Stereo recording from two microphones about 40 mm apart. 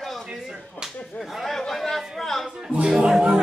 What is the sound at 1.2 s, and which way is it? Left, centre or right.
Chatter, centre.